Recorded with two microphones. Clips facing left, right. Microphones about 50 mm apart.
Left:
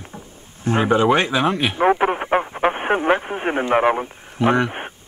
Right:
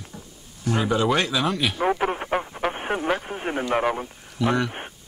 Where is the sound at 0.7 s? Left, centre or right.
Left.